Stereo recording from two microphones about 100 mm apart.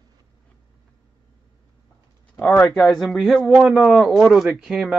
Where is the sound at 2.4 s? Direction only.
15° left (ahead or behind).